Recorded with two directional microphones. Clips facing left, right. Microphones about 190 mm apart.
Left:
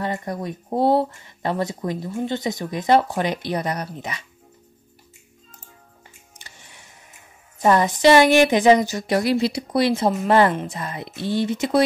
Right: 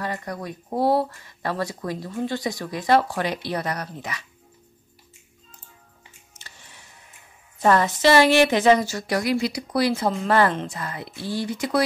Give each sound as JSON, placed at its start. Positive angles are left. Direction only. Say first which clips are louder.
{"t": 0.0, "sound": "speech", "louder": "left 4 dB", "side_deg": 20}
{"t": 6.3, "sound": "music", "louder": "even", "side_deg": 15}
{"t": 7.6, "sound": "speech", "louder": "left 3 dB", "side_deg": 15}